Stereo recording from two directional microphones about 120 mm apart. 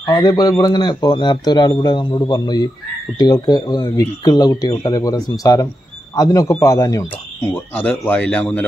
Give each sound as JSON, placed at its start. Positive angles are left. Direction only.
{"t": 0.1, "sound": "a man's voice", "side_deg": 35}
{"t": 8.0, "sound": "speech", "side_deg": 10}